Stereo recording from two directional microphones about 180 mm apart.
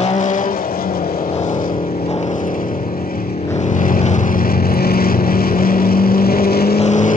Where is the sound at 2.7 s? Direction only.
35° left (ahead or behind).